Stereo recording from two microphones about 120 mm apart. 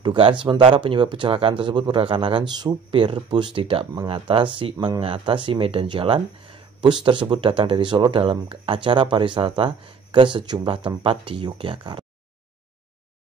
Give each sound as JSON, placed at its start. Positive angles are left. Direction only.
{"t": 0.0, "sound": "speech", "side_deg": -45}